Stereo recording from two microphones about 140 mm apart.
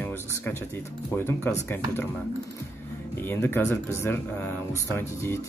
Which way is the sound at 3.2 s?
15° left (ahead or behind).